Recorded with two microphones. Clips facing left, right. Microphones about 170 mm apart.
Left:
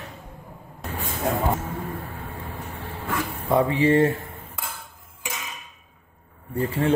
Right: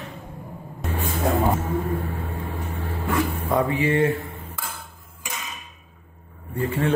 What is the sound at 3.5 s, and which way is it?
Speech, 25° left (ahead or behind).